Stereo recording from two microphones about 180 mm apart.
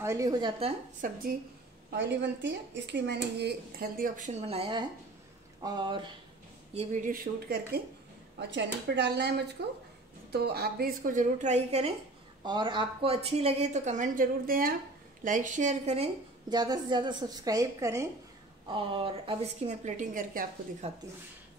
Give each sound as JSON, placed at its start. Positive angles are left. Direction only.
{"t": 0.0, "sound": "a woman's voice", "side_deg": -20}
{"t": 1.0, "sound": "a woman's voice", "side_deg": -45}
{"t": 1.9, "sound": "speech", "side_deg": -75}
{"t": 4.0, "sound": "a woman's voice", "side_deg": -45}
{"t": 6.7, "sound": "a woman's voice", "side_deg": -40}
{"t": 7.4, "sound": "speech", "side_deg": -60}
{"t": 8.4, "sound": "a woman's voice", "side_deg": -75}
{"t": 12.4, "sound": "a woman's voice", "side_deg": -25}
{"t": 16.4, "sound": "a woman's voice", "side_deg": -20}
{"t": 18.7, "sound": "a woman's voice", "side_deg": -30}